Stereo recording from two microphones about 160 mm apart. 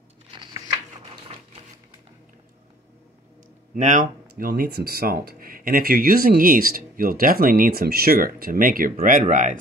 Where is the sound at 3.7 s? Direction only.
50° right (ahead or behind).